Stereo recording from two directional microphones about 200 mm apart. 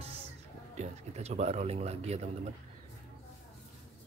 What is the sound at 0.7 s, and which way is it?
Speech, 35° right (ahead or behind).